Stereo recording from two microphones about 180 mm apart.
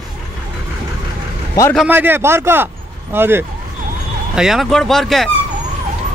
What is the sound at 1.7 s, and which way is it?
A man's voice, 10° right (ahead or behind).